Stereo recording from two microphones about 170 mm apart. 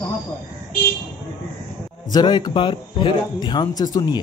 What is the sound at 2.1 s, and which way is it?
A man's voice, 25° left (ahead or behind).